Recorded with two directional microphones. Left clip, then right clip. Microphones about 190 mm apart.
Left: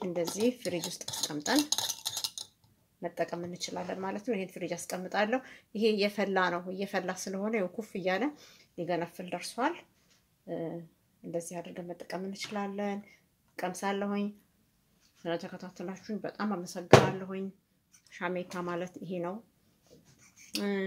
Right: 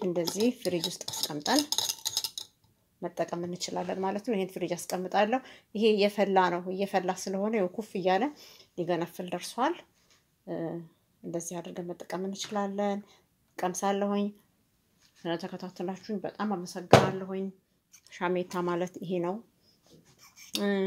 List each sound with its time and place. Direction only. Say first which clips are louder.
0.7 s speech: right 4 dB; 25° right (ahead or behind)
1.8 s cutlery: right 3 dB; 5° left (ahead or behind)
3.0 s speech: right 2 dB; 25° right (ahead or behind)
18.0 s speech: right 5 dB; 30° right (ahead or behind)
20.5 s speech: right 4 dB; 30° right (ahead or behind)